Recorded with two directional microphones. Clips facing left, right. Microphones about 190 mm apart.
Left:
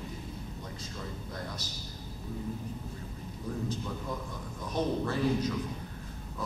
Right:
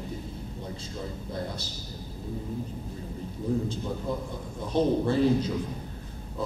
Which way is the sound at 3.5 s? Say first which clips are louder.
Right 9 dB; 30° right (ahead or behind).